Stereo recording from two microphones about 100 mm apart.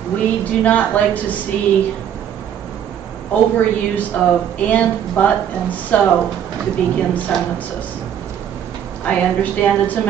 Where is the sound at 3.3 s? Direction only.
15° left (ahead or behind).